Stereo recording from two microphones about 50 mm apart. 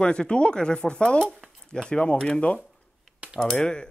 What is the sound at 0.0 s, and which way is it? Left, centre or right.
Speech, centre.